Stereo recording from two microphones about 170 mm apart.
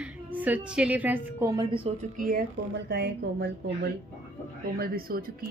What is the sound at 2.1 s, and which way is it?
Speech, 55° right (ahead or behind).